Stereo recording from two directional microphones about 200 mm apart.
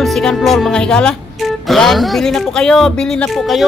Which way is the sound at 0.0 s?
Centre (ahead or behind).